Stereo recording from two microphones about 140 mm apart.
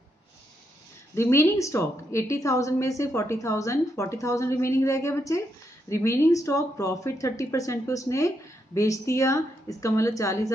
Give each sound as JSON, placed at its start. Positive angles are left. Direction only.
{"t": 1.1, "sound": "a woman's voice", "side_deg": 20}